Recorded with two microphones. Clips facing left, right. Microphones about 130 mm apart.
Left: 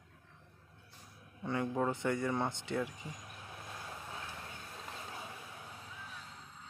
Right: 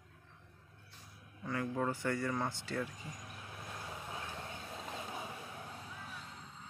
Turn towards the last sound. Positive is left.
turn(degrees=-15)  # may be behind; listen again after turning